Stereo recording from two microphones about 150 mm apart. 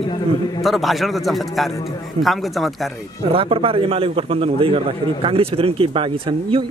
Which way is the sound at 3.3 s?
40° right (ahead or behind).